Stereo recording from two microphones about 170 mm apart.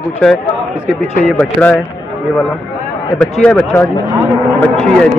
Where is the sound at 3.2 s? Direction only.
10° left (ahead or behind).